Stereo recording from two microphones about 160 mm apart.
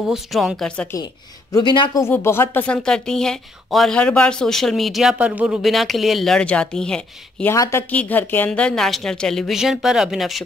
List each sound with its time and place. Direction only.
0.1 s speech: centre (ahead or behind)
1.5 s speech: 30° left (ahead or behind)
2.0 s speech: 15° left (ahead or behind)
7.5 s speech: 20° left (ahead or behind)
7.9 s speech: 10° left (ahead or behind)